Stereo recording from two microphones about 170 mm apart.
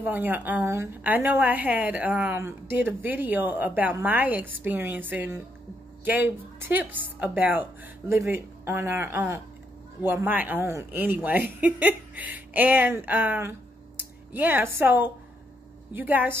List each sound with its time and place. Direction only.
0.0 s a woman's voice: 10° right (ahead or behind)